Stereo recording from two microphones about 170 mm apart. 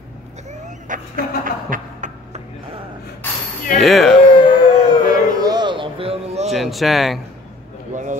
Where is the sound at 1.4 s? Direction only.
50° right (ahead or behind).